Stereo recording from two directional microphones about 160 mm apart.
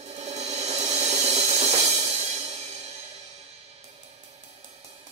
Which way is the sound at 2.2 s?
40° right (ahead or behind).